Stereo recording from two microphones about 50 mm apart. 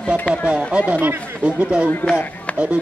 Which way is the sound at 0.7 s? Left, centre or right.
Centre.